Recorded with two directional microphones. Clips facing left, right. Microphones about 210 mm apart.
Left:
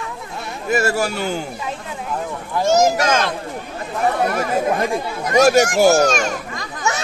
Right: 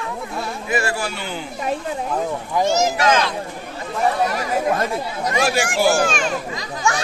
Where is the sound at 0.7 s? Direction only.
45° left (ahead or behind).